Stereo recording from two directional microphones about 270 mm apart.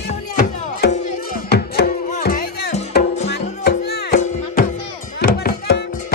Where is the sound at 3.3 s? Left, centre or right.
Left.